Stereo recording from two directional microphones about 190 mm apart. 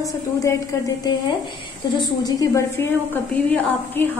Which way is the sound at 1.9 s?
20° left (ahead or behind).